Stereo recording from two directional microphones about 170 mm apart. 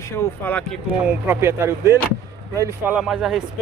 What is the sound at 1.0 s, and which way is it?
Speech, 15° right (ahead or behind).